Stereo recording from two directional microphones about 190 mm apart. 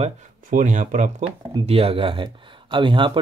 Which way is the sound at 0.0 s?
40° right (ahead or behind).